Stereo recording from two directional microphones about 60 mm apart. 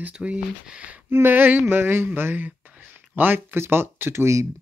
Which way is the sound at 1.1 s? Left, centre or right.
Right.